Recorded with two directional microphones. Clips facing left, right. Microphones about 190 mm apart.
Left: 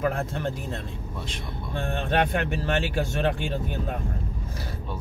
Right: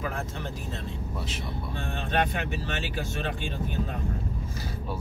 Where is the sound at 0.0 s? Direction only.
55° left (ahead or behind).